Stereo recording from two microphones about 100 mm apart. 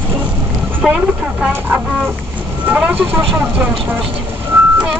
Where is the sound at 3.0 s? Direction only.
5° right (ahead or behind).